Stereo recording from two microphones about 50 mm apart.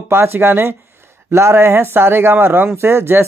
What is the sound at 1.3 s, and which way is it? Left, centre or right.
Speech, right.